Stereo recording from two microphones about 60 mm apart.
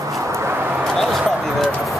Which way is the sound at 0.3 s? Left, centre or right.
Right.